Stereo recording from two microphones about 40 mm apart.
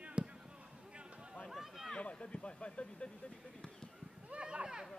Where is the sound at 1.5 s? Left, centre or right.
Centre.